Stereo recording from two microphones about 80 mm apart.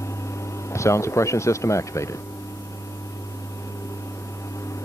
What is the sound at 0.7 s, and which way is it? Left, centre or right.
Speech, left.